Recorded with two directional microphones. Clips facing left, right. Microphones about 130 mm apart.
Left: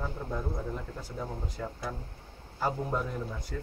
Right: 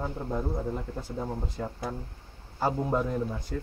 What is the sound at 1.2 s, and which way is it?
Speech, 20° right (ahead or behind).